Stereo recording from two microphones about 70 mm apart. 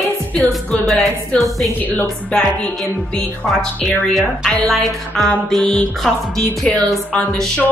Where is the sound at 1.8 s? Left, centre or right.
Left.